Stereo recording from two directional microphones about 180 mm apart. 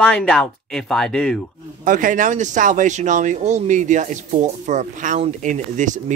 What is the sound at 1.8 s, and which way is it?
Speech, 45° right (ahead or behind).